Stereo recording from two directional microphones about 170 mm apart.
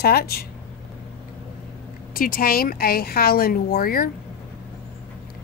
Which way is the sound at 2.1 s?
55° left (ahead or behind).